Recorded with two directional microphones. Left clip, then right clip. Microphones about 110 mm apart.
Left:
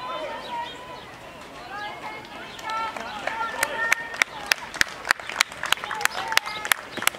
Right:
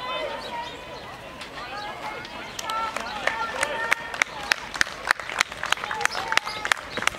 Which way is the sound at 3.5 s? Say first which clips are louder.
Left 1 dB; 25° left (ahead or behind).